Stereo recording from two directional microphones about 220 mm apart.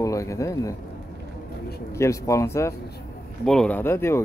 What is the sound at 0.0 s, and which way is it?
Speech, 15° left (ahead or behind).